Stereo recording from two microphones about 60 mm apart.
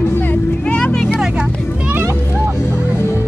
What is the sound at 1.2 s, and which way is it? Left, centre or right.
Music, centre.